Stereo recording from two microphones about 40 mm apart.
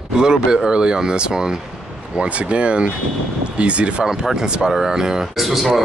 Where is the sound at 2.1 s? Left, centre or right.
Right.